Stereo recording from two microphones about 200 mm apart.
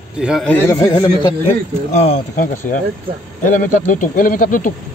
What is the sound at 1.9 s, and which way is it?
Speech, 35° left (ahead or behind).